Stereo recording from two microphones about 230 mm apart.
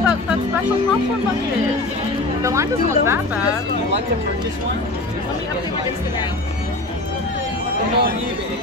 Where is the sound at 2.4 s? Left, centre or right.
Centre.